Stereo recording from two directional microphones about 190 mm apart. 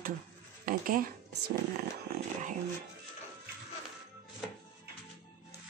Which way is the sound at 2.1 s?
55° right (ahead or behind).